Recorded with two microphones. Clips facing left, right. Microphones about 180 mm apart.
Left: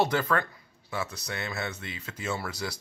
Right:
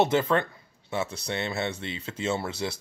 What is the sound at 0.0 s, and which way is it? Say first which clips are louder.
Speech: right 3 dB; 20° right (ahead or behind).